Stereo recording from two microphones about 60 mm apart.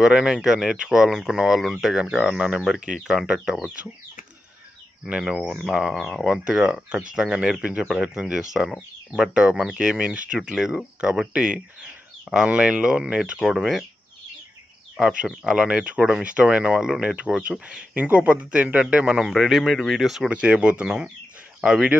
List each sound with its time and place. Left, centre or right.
0.0 s speech: centre
2.0 s speech: centre
5.0 s speech: centre
11.8 s bird: centre
12.4 s speech: centre
15.0 s speech: centre
20.2 s speech: centre